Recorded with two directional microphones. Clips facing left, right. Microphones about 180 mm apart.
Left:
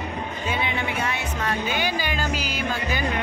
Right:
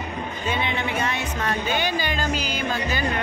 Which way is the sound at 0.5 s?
10° left (ahead or behind).